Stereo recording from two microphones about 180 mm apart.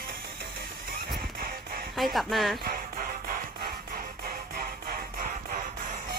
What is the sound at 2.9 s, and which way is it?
Music, 50° right (ahead or behind).